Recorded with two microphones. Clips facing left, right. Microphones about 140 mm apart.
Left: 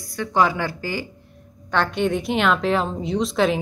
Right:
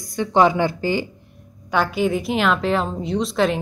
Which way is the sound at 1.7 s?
5° right (ahead or behind).